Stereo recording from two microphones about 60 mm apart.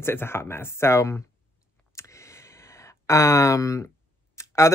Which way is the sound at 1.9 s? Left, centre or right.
Left.